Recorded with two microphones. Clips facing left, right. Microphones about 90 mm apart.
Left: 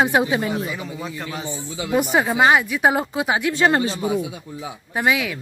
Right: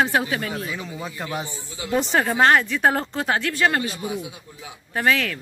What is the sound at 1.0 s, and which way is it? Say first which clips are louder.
Speech: left 1 dB; 5° right (ahead or behind).